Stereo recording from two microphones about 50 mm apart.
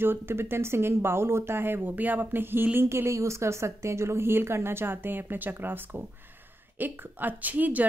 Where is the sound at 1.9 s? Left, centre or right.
Right.